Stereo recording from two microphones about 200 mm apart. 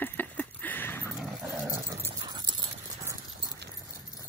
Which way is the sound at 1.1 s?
5° right (ahead or behind).